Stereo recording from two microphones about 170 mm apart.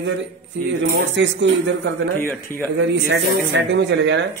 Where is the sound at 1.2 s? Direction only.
90° right.